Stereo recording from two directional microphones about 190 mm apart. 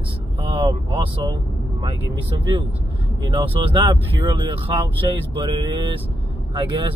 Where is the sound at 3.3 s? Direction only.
25° right (ahead or behind).